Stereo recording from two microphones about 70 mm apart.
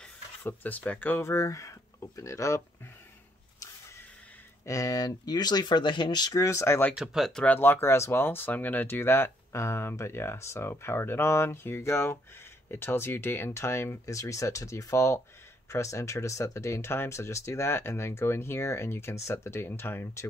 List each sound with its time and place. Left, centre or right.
0.4 s speech: left
1.2 s speech: left
4.6 s speech: left
6.3 s speech: left
7.0 s speech: centre
7.4 s speech: left